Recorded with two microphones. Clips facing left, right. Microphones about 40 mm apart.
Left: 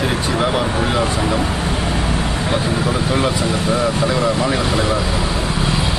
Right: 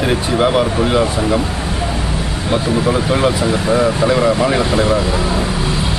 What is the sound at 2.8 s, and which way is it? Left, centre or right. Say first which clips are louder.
Speech: right 3 dB; centre.